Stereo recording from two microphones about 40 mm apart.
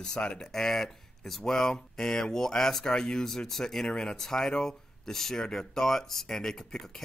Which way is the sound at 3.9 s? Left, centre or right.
Centre.